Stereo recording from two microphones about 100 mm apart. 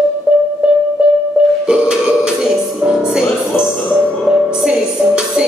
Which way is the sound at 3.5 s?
25° left (ahead or behind).